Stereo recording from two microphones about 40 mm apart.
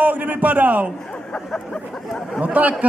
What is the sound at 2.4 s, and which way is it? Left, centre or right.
Speech, right.